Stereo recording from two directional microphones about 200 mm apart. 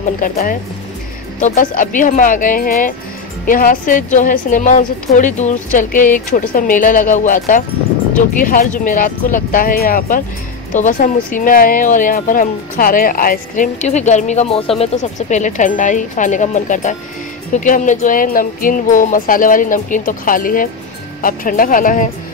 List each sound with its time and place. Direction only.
0.2 s a woman's voice: 45° left (ahead or behind)